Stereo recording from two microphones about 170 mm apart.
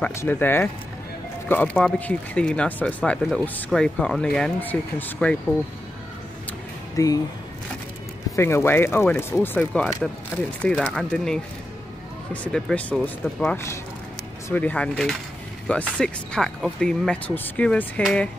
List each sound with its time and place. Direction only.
0.0 s speech: 15° left (ahead or behind)
7.0 s speech: 20° left (ahead or behind)
8.4 s speech: 15° left (ahead or behind)